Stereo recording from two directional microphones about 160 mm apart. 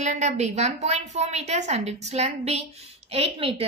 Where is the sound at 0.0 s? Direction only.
45° right (ahead or behind).